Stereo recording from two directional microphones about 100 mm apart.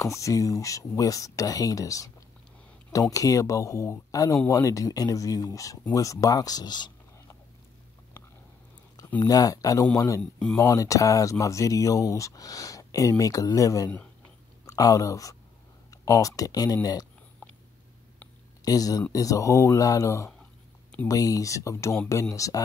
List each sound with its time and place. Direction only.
0.0 s speech: 35° left (ahead or behind)
9.2 s speech: 35° left (ahead or behind)
18.6 s speech: 40° left (ahead or behind)